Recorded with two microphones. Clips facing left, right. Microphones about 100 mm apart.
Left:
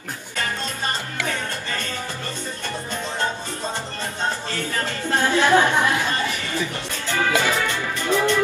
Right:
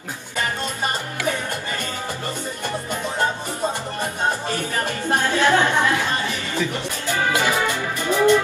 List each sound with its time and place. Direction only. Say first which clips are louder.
1.2 s music: right 4 dB; 15° right (ahead or behind)
4.0 s music: right 4 dB; 15° right (ahead or behind)
5.3 s speech: left 2 dB; 15° left (ahead or behind)
6.7 s music: right 2 dB; 15° right (ahead or behind)